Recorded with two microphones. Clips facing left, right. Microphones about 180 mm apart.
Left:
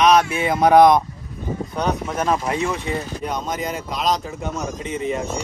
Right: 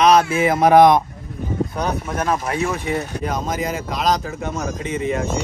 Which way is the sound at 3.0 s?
65° right (ahead or behind).